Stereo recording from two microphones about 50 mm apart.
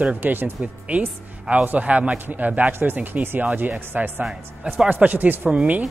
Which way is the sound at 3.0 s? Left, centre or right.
Right.